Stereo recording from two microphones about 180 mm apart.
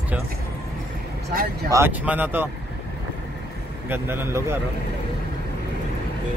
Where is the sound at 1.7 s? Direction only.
10° right (ahead or behind).